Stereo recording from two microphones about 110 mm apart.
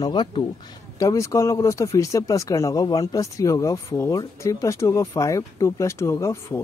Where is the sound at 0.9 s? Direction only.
30° left (ahead or behind).